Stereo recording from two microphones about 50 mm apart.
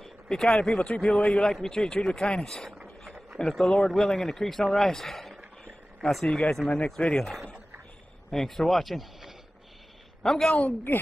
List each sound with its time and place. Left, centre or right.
0.0 s a sound: centre
0.6 s a man's voice: centre
6.7 s speech: left
7.2 s speech: centre